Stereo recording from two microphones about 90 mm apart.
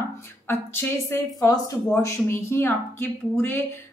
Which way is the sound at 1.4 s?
40° left (ahead or behind).